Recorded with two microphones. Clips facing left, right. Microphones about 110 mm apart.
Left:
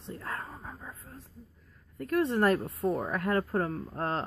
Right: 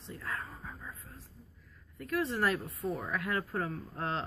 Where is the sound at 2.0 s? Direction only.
45° left (ahead or behind).